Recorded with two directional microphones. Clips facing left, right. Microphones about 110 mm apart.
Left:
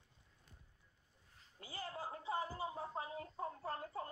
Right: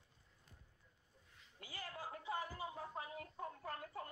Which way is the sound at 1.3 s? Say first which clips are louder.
Left 3 dB; 35° left (ahead or behind).